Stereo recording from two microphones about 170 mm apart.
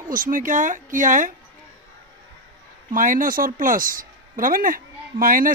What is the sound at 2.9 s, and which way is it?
Speech, 55° right (ahead or behind).